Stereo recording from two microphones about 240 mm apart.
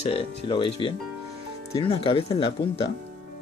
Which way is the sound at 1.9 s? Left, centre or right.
Left.